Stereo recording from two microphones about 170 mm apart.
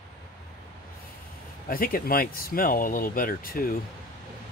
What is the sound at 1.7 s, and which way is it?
Speech, 60° left (ahead or behind).